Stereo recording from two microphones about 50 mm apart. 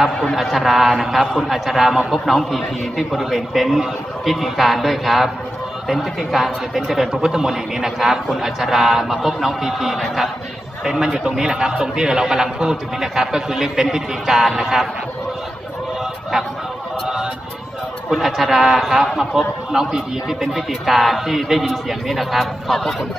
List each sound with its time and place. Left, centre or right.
0.0 s a man's voice: centre
18.4 s a man's voice: centre